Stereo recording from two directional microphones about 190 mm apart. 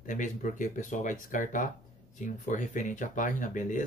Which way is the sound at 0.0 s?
40° left (ahead or behind).